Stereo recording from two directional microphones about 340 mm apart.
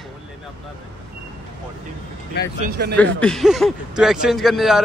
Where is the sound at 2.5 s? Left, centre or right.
Right.